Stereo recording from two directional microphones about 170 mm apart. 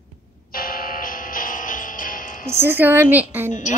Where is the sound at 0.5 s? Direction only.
60° left (ahead or behind).